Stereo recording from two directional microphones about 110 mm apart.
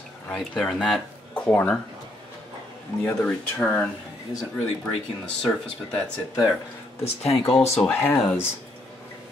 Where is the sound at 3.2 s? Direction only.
10° left (ahead or behind).